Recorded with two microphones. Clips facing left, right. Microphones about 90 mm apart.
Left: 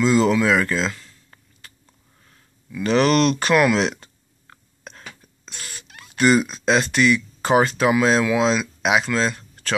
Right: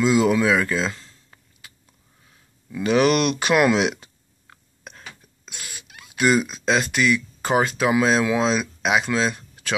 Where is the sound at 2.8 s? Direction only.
10° right (ahead or behind).